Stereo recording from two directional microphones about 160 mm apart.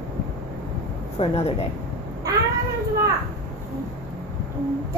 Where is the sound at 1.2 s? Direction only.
40° left (ahead or behind).